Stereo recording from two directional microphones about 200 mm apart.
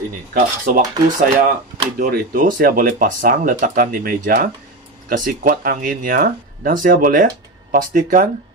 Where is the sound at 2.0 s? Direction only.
45° right (ahead or behind).